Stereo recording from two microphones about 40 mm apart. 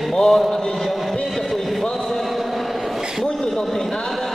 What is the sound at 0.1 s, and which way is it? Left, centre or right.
Speech, centre.